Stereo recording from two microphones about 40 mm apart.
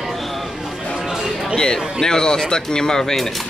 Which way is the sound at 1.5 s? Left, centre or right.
Centre.